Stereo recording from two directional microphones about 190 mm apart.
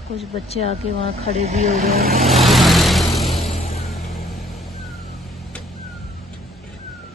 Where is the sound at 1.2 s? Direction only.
35° right (ahead or behind).